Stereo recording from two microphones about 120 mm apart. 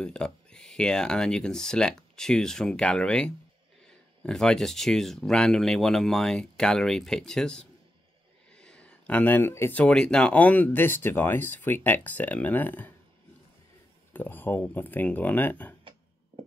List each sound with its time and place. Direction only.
0.0 s speech: 5° left (ahead or behind)
14.1 s speech: 15° left (ahead or behind)